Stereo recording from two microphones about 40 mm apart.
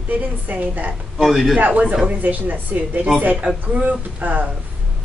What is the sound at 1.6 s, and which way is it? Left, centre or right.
A woman's voice, right.